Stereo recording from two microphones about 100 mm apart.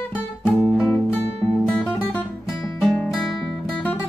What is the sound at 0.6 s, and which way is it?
Music, 5° left (ahead or behind).